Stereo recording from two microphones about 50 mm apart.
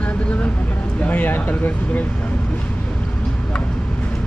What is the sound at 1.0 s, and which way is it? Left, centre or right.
Speech, left.